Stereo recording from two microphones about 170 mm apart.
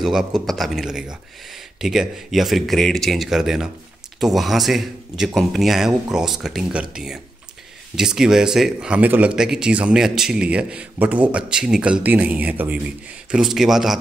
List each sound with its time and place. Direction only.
0.0 s speech: 5° right (ahead or behind)